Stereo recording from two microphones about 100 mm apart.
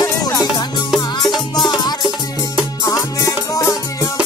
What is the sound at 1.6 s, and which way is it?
Music, 45° left (ahead or behind).